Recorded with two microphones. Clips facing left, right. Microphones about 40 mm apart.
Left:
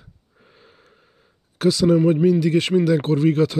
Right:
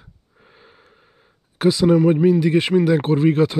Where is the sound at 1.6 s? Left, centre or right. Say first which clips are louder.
Right 1 dB; right.